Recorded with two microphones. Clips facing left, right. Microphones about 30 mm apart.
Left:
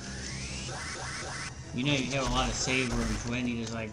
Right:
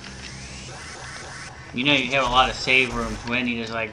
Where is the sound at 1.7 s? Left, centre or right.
Right.